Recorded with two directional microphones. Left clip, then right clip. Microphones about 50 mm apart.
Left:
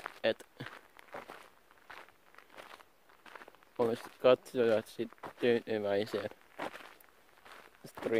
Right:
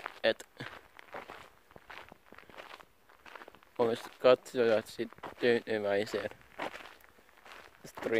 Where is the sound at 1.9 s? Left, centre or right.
Centre.